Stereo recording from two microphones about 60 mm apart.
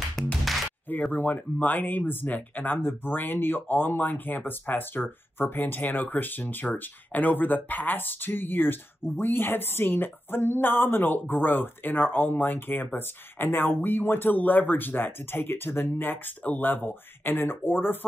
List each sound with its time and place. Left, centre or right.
0.1 s music: centre
1.1 s speech: left